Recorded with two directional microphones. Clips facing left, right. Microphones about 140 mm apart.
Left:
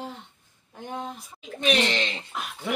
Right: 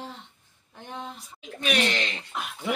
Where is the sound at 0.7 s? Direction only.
15° left (ahead or behind).